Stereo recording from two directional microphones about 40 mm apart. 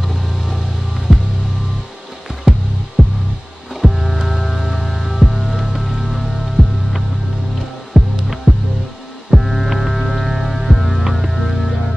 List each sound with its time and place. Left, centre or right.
0.0 s music: centre
0.9 s music: centre
2.5 s music: centre
3.0 s heart sounds: centre
3.8 s music: centre
6.0 s music: centre
9.3 s hum: centre